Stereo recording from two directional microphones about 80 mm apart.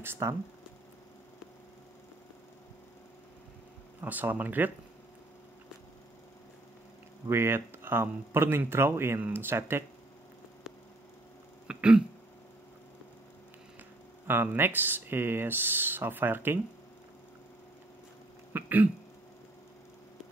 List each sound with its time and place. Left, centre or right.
0.0 s speech: right
4.0 s speech: right
7.2 s speech: right
11.6 s throat clearing: centre
14.2 s speech: right
18.5 s throat clearing: right